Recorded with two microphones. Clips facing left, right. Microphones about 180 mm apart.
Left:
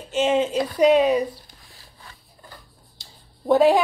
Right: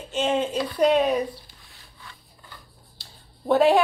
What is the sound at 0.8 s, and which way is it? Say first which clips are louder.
Speech: left 3 dB; 10° left (ahead or behind).